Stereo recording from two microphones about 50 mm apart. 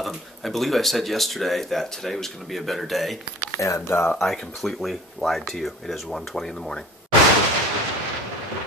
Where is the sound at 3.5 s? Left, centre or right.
Left.